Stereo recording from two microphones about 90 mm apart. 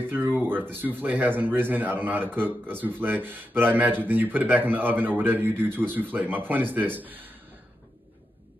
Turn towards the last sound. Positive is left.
turn(degrees=-20)  # may be behind; listen again after turning